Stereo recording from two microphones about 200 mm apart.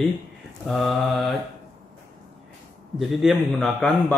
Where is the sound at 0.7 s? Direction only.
Centre (ahead or behind).